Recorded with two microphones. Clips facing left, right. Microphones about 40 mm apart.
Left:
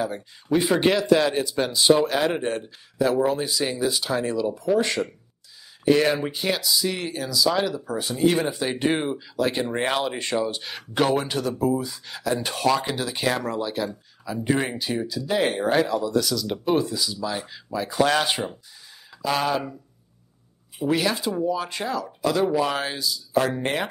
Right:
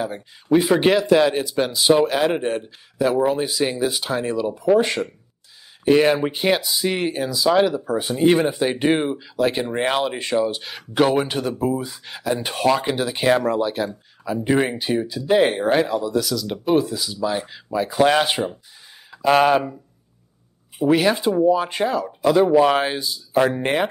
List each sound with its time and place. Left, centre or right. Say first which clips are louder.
0.0 s speech: right 1 dB; centre
0.6 s speech: right 4 dB; centre
4.7 s speech: right 6 dB; right
5.9 s speech: right 4 dB; centre
11.1 s speech: right 3 dB; centre
14.5 s speech: right 4 dB; centre
19.0 s speech: right 8 dB; right
20.8 s speech: right 6 dB; right